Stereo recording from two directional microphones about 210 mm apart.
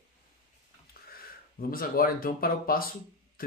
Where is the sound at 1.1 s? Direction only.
45° left (ahead or behind).